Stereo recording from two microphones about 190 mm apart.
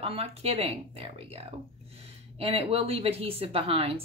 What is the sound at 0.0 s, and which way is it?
A woman's voice, 30° right (ahead or behind).